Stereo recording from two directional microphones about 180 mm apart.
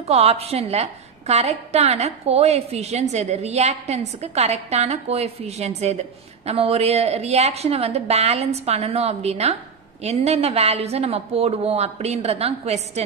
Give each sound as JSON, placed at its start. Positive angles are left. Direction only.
{"t": 0.0, "sound": "a woman's voice", "side_deg": -35}